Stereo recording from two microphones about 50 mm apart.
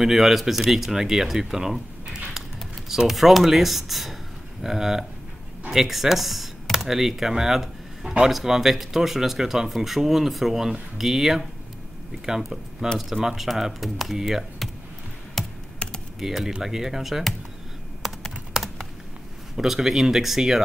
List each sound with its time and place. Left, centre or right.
0.0 s speech: centre
15.4 s computer keyboard: centre
15.8 s computer keyboard: left
16.2 s speech: centre
18.0 s computer keyboard: centre
19.5 s speech: centre